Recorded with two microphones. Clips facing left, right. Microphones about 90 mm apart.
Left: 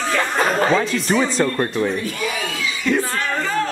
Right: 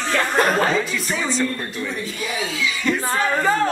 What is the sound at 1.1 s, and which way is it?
Speech, 60° left (ahead or behind).